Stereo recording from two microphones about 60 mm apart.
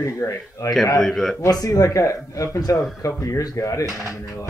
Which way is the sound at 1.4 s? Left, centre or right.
Left.